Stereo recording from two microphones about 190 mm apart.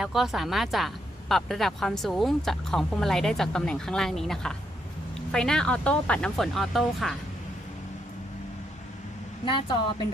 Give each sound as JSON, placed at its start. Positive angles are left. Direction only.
{"t": 0.0, "sound": "speech", "side_deg": 0}
{"t": 9.4, "sound": "a woman's voice", "side_deg": 25}